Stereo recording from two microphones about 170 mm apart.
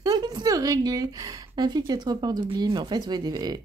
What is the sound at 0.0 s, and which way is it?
A woman's voice, 25° right (ahead or behind).